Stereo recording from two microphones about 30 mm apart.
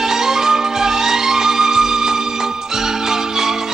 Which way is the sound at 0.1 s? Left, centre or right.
Centre.